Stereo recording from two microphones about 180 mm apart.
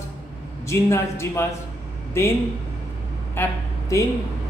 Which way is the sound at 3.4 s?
15° left (ahead or behind).